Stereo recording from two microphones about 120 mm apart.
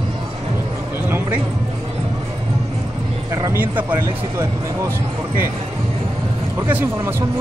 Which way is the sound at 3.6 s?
15° right (ahead or behind).